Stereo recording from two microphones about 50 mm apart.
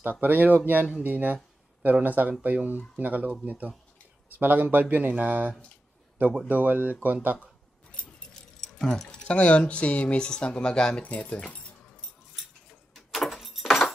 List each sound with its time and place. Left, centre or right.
0.0 s speech: right
1.0 s a sound: right
2.0 s speech: right
8.3 s keys jangling: centre
9.2 s speech: left
11.0 s speech: left
12.9 s keys jangling: centre